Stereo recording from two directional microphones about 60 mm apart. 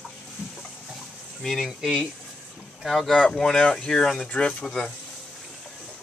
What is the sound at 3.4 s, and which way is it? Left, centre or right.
Speech, centre.